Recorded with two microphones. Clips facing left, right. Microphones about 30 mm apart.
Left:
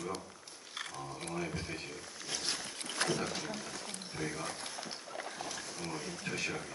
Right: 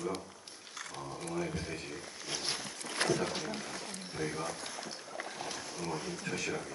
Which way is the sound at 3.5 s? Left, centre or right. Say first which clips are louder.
Right 2 dB; right.